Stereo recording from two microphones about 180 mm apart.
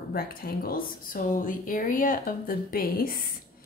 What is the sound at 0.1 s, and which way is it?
A woman's voice, 55° left (ahead or behind).